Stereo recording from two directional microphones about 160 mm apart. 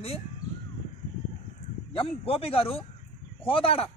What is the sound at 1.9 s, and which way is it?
Speech, 35° left (ahead or behind).